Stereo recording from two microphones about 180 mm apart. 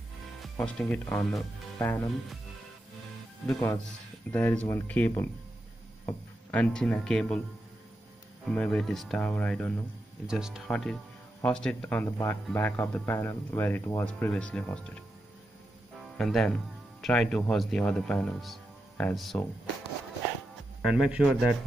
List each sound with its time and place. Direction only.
0.4 s speech: 5° left (ahead or behind)
3.5 s speech: 15° left (ahead or behind)
8.5 s speech: 5° left (ahead or behind)
10.2 s speech: 5° right (ahead or behind)
16.2 s speech: centre (ahead or behind)
20.8 s speech: 5° right (ahead or behind)